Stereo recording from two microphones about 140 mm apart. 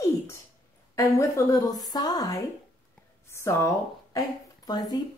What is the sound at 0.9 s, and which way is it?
A woman's voice, 20° left (ahead or behind).